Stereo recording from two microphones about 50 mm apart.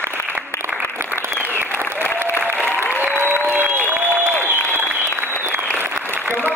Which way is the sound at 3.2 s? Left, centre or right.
Right.